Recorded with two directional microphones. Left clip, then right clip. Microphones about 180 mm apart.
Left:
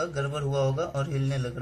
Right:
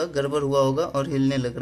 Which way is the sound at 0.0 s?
40° right (ahead or behind).